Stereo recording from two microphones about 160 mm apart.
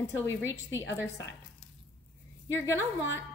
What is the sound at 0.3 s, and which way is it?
Speech, 15° left (ahead or behind).